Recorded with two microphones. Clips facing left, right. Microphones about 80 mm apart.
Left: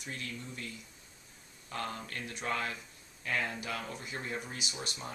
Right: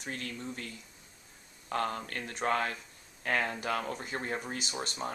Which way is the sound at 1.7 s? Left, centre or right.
Right.